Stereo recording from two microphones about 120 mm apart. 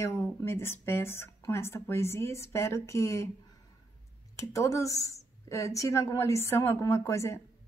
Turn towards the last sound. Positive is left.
turn(degrees=25)  # may be behind; listen again after turning